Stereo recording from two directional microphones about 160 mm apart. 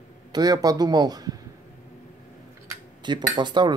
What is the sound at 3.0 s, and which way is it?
Speech, 30° right (ahead or behind).